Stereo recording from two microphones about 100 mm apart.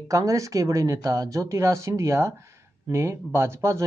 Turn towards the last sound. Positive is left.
turn(degrees=-30)  # may be behind; listen again after turning